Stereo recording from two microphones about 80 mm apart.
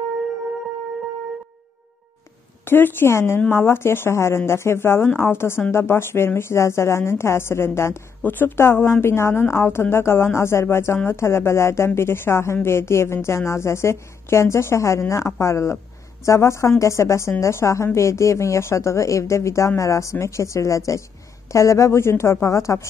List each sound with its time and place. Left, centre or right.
2.6 s a woman's voice: left